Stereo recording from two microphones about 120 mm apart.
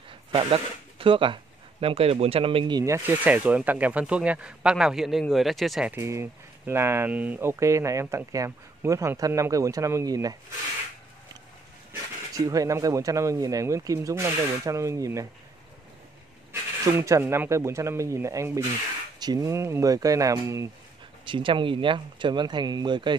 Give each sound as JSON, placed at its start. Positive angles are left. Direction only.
{"t": 0.3, "sound": "speech", "side_deg": -50}
{"t": 2.8, "sound": "speech", "side_deg": -25}
{"t": 3.3, "sound": "speech", "side_deg": -10}
{"t": 5.9, "sound": "speech", "side_deg": -25}
{"t": 11.9, "sound": "speech", "side_deg": -30}
{"t": 16.9, "sound": "speech", "side_deg": -20}
{"t": 21.3, "sound": "speech", "side_deg": -45}